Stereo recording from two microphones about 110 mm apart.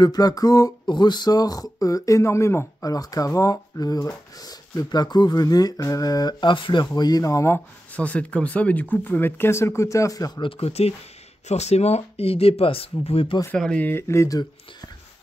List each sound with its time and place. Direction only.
0.0 s speech: 35° left (ahead or behind)
7.0 s speech: 35° left (ahead or behind)
7.9 s speech: 15° left (ahead or behind); by 10.4 s 35° left (ahead or behind)
10.4 s speech: 65° left (ahead or behind)
11.4 s speech: 80° left; by 13.4 s 55° left (ahead or behind)
13.6 s speech: 10° left (ahead or behind); by 14.9 s 30° left (ahead or behind)